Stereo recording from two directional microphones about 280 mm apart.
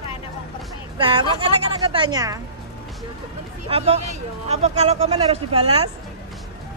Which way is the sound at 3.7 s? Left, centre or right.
Right.